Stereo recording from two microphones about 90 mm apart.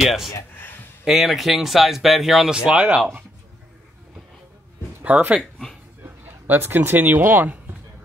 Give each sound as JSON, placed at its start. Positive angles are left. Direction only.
{"t": 0.0, "sound": "speech", "side_deg": 0}
{"t": 5.0, "sound": "speech", "side_deg": -15}